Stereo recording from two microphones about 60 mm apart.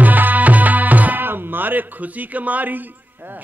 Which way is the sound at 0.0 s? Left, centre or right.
Right.